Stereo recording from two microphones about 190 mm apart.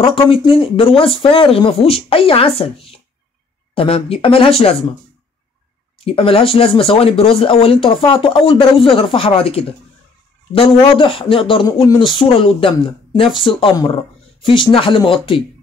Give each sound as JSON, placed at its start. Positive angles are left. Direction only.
{"t": 0.0, "sound": "speech", "side_deg": 25}
{"t": 6.0, "sound": "speech", "side_deg": 30}